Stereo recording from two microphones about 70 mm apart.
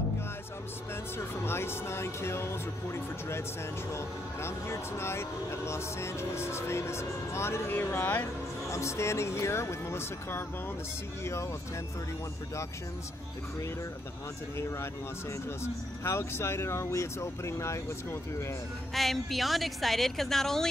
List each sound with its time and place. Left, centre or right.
1.1 s speech: left
15.6 s speech: left
18.9 s a woman's voice: centre